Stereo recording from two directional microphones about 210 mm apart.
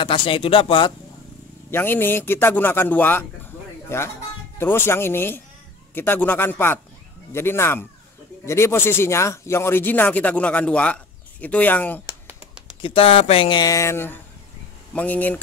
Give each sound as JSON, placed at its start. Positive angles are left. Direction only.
{"t": 0.0, "sound": "speech", "side_deg": 25}
{"t": 1.7, "sound": "speech", "side_deg": 10}
{"t": 12.3, "sound": "a sound", "side_deg": -5}
{"t": 12.8, "sound": "speech", "side_deg": 25}